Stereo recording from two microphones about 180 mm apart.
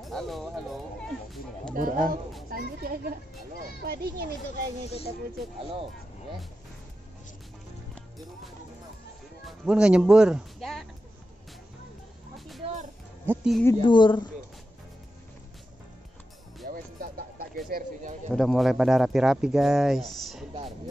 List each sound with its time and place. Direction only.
0.0 s speech: centre (ahead or behind)
1.8 s a child's voice: 50° right (ahead or behind)
9.4 s speech: centre (ahead or behind)
12.4 s music: centre (ahead or behind)
13.3 s speech: 5° right (ahead or behind)
13.7 s speech: 25° left (ahead or behind)
16.6 s a sound: 55° right (ahead or behind)
17.6 s speech: 50° right (ahead or behind)
18.3 s speech: centre (ahead or behind)